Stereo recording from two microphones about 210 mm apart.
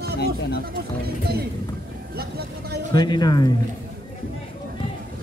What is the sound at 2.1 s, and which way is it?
Vehicle, 50° right (ahead or behind).